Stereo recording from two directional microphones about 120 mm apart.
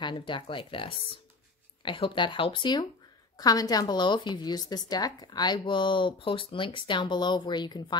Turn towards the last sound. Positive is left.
turn(degrees=35)  # may be behind; listen again after turning